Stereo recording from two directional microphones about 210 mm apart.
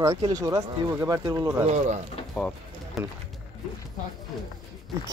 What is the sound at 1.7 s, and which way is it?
Speech, 35° right (ahead or behind).